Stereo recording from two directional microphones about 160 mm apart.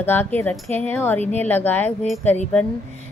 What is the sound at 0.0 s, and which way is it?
Speech, 15° left (ahead or behind).